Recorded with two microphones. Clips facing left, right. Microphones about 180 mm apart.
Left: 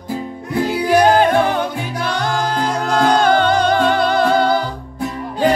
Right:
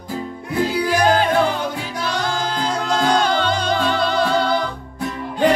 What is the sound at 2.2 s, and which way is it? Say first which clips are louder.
Music: left 5 dB; 55° left (ahead or behind).